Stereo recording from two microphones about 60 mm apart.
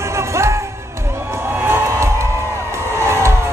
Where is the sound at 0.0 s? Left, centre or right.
Right.